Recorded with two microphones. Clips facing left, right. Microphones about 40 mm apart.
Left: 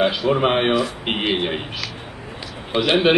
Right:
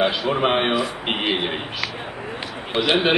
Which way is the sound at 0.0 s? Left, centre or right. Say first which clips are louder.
Left 2 dB; centre.